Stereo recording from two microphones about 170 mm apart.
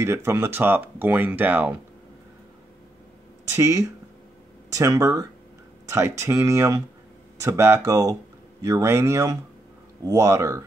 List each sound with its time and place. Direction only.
0.0 s speech: 15° right (ahead or behind)
3.5 s speech: 15° right (ahead or behind)